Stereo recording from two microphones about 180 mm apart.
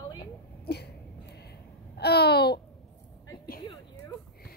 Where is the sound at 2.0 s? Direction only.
65° left (ahead or behind).